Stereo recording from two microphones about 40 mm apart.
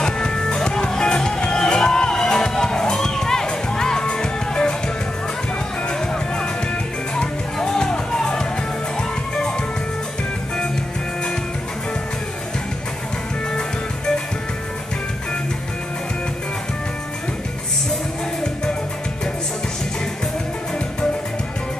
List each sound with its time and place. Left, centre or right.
0.0 s music: centre